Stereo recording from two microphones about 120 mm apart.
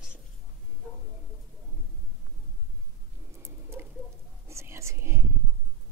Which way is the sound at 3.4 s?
20° right (ahead or behind).